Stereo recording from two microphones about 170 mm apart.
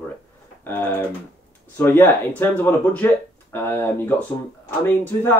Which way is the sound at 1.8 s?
10° left (ahead or behind).